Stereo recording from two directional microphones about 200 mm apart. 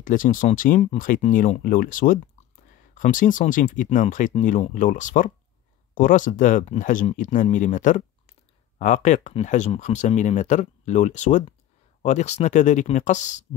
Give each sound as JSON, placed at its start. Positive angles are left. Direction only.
{"t": 0.0, "sound": "speech", "side_deg": 40}